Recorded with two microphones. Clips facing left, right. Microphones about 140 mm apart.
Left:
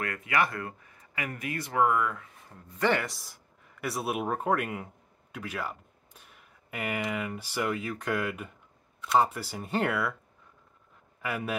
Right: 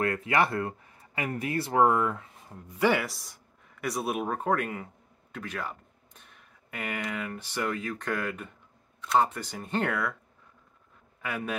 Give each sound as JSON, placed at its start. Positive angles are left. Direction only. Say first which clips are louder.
{"t": 0.0, "sound": "speech", "louder": "right 3 dB", "side_deg": -30}
{"t": 2.7, "sound": "speech", "louder": "right 2 dB", "side_deg": -10}
{"t": 11.2, "sound": "speech", "louder": "left 1 dB", "side_deg": 5}